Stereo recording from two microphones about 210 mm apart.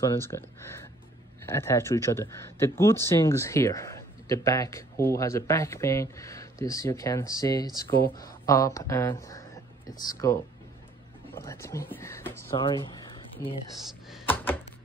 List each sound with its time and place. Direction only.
0.0 s speech: 10° left (ahead or behind)
12.5 s speech: 20° left (ahead or behind)
14.2 s a sound: 10° left (ahead or behind)